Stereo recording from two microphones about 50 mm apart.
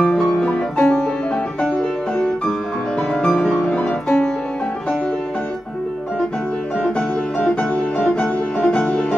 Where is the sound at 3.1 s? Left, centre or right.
Centre.